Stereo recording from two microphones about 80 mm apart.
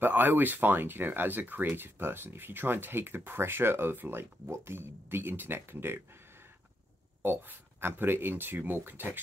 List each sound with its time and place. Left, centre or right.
0.0 s speech: right
7.2 s speech: right